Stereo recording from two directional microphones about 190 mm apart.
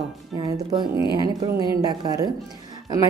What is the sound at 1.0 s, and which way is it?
Speech, 25° left (ahead or behind).